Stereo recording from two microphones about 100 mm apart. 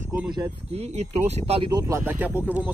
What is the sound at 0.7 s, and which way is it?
Speech, 90° right.